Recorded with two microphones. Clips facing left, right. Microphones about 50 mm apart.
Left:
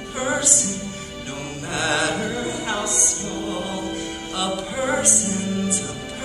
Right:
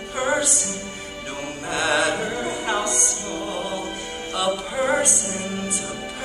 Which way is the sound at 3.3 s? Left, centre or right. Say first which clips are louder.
Even; centre.